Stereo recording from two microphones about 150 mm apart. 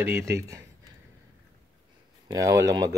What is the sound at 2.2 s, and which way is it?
Speech, 25° right (ahead or behind).